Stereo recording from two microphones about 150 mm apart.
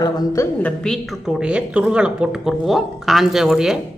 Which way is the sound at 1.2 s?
5° right (ahead or behind).